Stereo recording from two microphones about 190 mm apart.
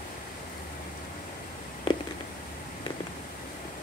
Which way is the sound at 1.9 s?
25° left (ahead or behind).